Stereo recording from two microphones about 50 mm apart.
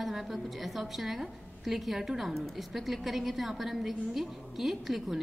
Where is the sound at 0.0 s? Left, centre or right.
Centre.